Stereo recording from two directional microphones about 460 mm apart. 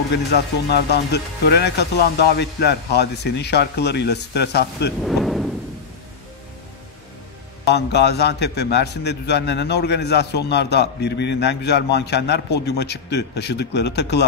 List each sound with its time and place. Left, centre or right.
0.3 s speech: left
1.1 s a man's voice: left
2.0 s speech: left
2.3 s a man's voice: left
5.0 s a sound: centre
7.6 s a man's voice: left